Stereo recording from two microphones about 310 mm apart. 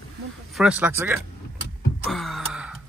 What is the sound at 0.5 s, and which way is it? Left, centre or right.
Speech, centre.